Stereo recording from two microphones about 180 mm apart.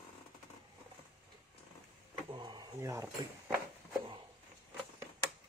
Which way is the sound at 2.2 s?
25° right (ahead or behind).